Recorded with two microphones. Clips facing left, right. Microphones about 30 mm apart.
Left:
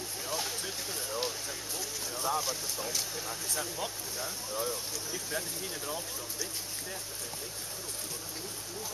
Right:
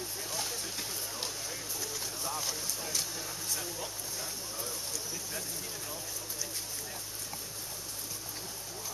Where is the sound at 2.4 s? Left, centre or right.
Centre.